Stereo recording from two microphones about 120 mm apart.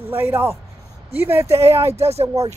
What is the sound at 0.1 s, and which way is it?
Speech, 20° right (ahead or behind).